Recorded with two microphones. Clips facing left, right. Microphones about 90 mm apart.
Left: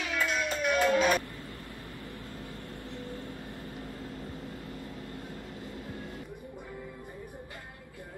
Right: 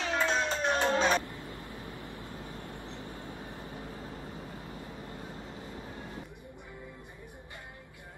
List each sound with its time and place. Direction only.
0.0 s music: 30° right (ahead or behind)
2.0 s vehicle: 20° right (ahead or behind)